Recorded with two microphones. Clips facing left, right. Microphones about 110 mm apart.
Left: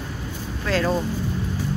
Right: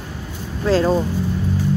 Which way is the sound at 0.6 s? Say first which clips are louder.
Right 6 dB; 30° right (ahead or behind).